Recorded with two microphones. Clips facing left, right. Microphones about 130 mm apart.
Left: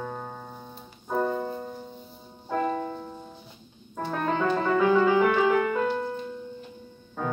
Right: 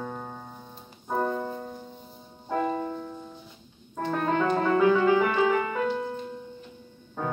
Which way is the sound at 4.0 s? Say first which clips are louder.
Right 1 dB; 5° left (ahead or behind).